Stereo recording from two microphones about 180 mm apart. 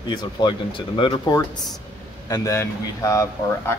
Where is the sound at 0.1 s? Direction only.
25° left (ahead or behind).